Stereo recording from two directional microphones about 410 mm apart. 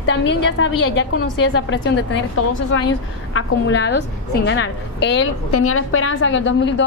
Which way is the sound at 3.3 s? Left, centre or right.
Left.